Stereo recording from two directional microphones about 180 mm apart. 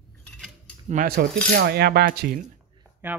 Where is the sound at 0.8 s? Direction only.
50° right (ahead or behind).